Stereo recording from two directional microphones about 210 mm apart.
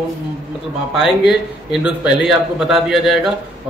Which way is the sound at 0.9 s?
Centre (ahead or behind).